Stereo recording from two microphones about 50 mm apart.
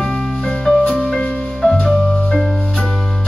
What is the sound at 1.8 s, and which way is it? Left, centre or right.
Music, centre.